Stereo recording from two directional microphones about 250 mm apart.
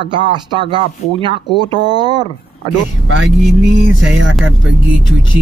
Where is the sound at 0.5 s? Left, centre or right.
Centre.